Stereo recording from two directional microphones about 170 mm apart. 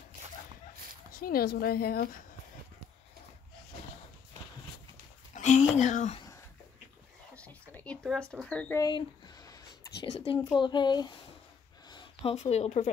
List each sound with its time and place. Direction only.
1.1 s a woman's voice: 60° left (ahead or behind)
5.3 s speech: 45° left (ahead or behind)
7.7 s speech: 5° left (ahead or behind)
8.7 s a sound: 20° left (ahead or behind)
10.1 s speech: 30° left (ahead or behind)